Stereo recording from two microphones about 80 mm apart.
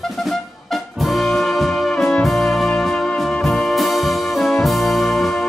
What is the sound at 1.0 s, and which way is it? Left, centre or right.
Music, centre.